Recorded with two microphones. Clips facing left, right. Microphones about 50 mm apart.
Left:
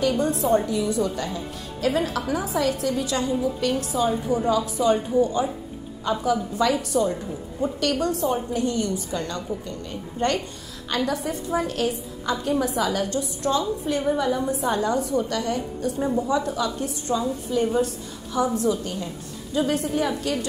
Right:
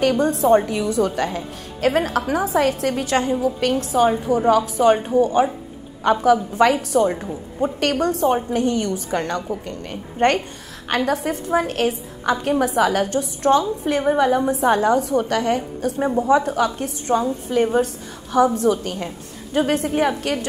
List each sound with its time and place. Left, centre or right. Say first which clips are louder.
0.0 s a woman's voice: right 5 dB; right
6.5 s a woman's voice: right 5 dB; right